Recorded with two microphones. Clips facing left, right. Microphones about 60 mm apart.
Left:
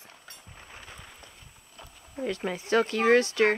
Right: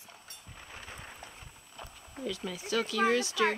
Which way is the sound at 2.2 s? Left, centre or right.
Left.